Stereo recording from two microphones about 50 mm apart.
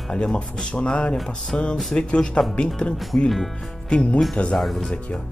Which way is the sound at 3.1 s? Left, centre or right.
Left.